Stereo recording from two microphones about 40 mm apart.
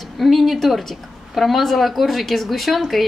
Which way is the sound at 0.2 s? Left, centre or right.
Centre.